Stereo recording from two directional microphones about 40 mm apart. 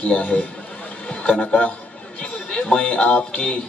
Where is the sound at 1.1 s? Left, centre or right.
Left.